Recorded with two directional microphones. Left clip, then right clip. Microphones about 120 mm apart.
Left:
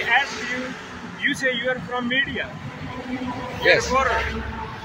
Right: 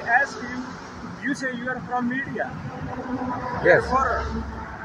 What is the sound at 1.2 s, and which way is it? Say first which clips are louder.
Speech: left 6 dB; 20° right (ahead or behind).